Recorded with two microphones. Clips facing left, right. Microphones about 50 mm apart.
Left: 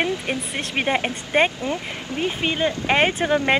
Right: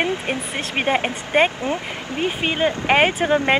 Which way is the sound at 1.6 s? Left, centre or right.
Right.